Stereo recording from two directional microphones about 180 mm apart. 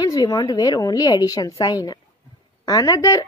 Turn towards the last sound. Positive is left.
turn(degrees=20)  # may be behind; listen again after turning